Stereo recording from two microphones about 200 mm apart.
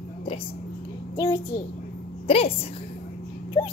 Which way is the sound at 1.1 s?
15° left (ahead or behind).